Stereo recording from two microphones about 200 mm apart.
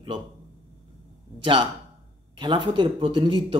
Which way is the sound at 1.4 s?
25° right (ahead or behind).